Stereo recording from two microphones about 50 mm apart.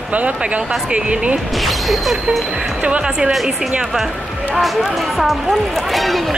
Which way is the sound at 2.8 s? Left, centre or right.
Centre.